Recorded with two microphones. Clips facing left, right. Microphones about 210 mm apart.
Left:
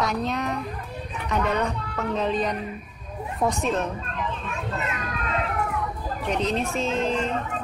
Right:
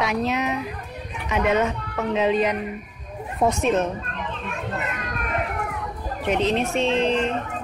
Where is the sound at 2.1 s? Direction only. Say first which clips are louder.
Right 5 dB; 75° right (ahead or behind).